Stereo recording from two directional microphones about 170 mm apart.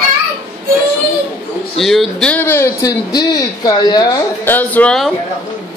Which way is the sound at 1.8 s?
Centre (ahead or behind).